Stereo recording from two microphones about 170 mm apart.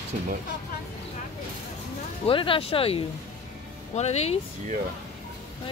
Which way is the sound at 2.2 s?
30° left (ahead or behind).